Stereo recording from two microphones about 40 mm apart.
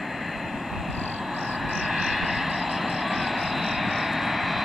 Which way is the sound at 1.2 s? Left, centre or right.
Centre.